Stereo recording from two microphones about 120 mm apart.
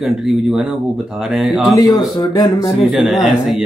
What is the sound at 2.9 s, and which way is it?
Speech, 5° right (ahead or behind).